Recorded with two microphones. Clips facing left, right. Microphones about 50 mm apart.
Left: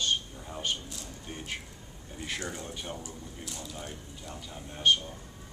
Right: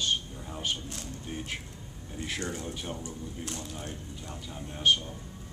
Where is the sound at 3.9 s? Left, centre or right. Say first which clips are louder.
Right 2 dB; centre.